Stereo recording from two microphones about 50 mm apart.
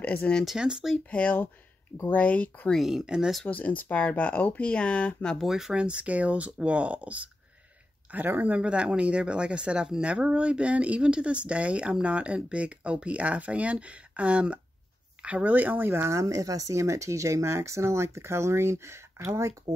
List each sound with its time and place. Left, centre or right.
0.0 s speech: left
0.6 s speech: centre
0.9 s speech: left
2.8 s speech: centre
3.4 s speech: left
5.4 s speech: centre
5.8 s speech: right
8.4 s speech: right
16.1 s speech: right